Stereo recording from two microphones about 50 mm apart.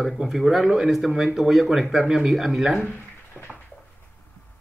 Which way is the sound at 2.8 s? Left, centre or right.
Left.